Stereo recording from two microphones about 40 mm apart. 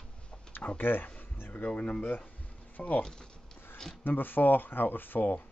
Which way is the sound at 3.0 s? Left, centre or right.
Centre.